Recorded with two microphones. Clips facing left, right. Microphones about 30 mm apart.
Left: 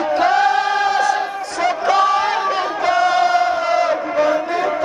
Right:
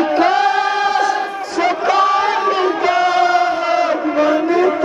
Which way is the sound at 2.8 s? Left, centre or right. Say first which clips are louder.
Even; centre.